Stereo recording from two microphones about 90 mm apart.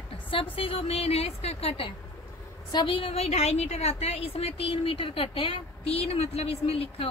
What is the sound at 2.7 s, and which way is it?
Speech, 70° left (ahead or behind).